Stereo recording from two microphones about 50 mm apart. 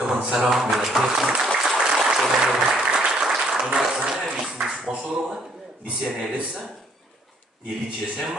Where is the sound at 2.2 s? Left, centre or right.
Centre.